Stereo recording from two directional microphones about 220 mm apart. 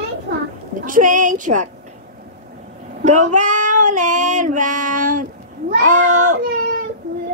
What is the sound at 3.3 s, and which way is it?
Child singing, 35° right (ahead or behind).